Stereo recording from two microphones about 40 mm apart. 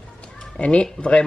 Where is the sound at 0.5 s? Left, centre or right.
Left.